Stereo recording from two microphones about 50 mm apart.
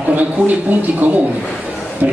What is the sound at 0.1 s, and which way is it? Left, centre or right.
A man's voice, right.